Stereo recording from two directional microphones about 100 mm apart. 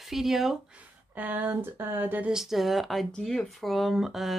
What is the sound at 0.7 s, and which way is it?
Speech, 15° right (ahead or behind).